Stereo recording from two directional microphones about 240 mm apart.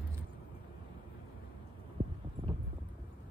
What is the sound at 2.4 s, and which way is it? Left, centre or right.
Wind, right.